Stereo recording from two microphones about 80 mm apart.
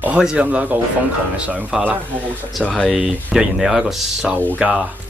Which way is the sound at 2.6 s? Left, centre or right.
Centre.